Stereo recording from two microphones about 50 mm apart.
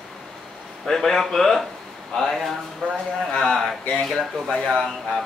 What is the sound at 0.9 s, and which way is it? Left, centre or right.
A man's voice, centre.